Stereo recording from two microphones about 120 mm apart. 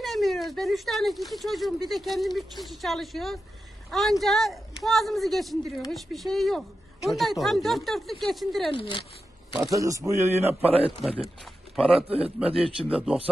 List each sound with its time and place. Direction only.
0.0 s speech: centre (ahead or behind)
8.7 s speech: 45° left (ahead or behind)
9.5 s speech: 25° right (ahead or behind)
10.6 s speech: 55° right (ahead or behind)
12.2 s a man's voice: 10° right (ahead or behind)